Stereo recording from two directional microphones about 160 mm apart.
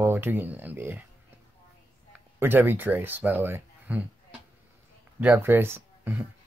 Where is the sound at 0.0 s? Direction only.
15° right (ahead or behind).